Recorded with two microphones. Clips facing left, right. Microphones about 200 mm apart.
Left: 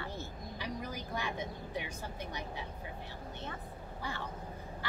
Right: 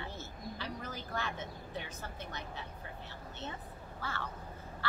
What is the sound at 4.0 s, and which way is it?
Speech, 15° left (ahead or behind).